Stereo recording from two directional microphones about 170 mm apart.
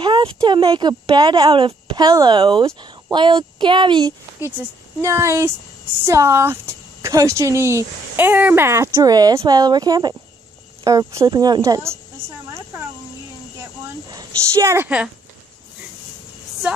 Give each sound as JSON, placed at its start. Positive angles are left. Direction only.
{"t": 0.0, "sound": "speech", "side_deg": -30}
{"t": 5.0, "sound": "speech", "side_deg": -15}
{"t": 14.0, "sound": "speech", "side_deg": -20}